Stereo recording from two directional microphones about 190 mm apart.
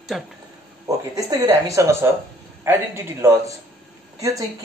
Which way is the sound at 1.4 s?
15° right (ahead or behind).